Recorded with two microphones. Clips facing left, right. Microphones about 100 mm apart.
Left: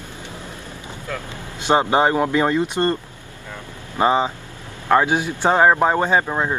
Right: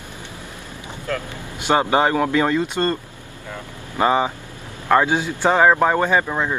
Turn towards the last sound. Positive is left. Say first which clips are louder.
# even
turn(degrees=15)  # may be behind; listen again after turning